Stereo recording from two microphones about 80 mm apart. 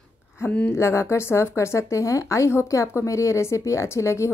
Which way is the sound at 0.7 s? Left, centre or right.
Left.